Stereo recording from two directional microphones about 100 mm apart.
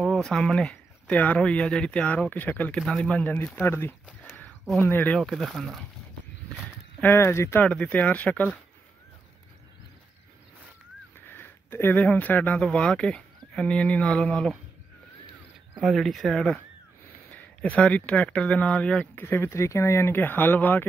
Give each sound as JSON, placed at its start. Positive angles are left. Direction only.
{"t": 0.0, "sound": "speech", "side_deg": 5}
{"t": 5.2, "sound": "speech", "side_deg": 0}
{"t": 7.0, "sound": "speech", "side_deg": 25}
{"t": 7.6, "sound": "speech", "side_deg": 15}
{"t": 11.1, "sound": "speech", "side_deg": 20}
{"t": 15.8, "sound": "speech", "side_deg": 0}
{"t": 19.2, "sound": "speech", "side_deg": 25}